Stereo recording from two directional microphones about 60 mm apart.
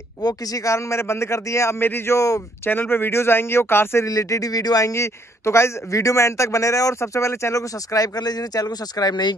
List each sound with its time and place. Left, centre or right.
0.3 s speech: left
1.8 s speech: left
2.1 s a man's voice: left
2.6 s speech: left
4.0 s speech: left
4.9 s a man's voice: left